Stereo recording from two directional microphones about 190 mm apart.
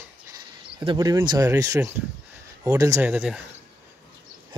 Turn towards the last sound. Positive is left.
turn(degrees=-5)  # may be behind; listen again after turning